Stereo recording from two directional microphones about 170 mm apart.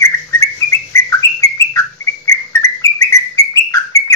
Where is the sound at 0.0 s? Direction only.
15° left (ahead or behind).